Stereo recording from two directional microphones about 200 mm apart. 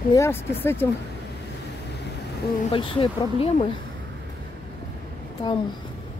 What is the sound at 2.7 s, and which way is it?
Speech, 25° left (ahead or behind).